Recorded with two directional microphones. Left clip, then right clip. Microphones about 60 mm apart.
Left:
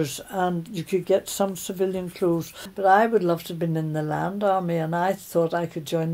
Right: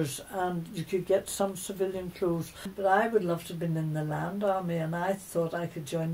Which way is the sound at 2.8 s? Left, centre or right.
Left.